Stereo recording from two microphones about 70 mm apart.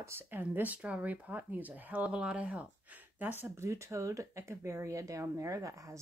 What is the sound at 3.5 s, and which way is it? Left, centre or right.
Speech, right.